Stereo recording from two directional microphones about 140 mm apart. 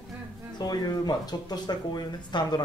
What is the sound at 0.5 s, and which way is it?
Speech, 30° left (ahead or behind).